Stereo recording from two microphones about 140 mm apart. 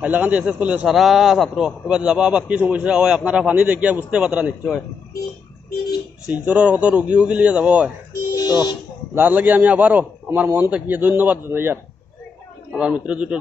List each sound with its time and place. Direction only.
0.0 s a man's voice: 10° right (ahead or behind)
6.2 s a man's voice: 10° right (ahead or behind)
8.1 s a sound: 25° left (ahead or behind)
9.1 s a man's voice: 15° right (ahead or behind)